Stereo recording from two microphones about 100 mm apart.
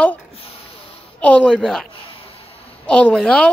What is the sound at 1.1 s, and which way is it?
Speech, 15° left (ahead or behind).